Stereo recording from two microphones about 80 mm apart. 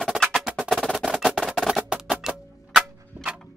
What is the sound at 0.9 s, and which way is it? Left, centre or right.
Percussion, centre.